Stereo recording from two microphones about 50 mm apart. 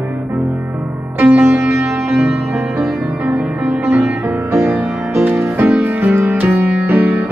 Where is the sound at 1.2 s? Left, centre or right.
Right.